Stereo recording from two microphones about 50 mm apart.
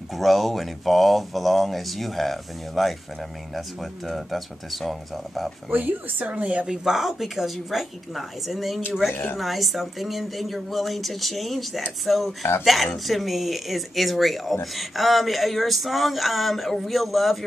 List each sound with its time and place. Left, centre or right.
0.1 s speech: centre
5.7 s speech: right
6.7 s speech: centre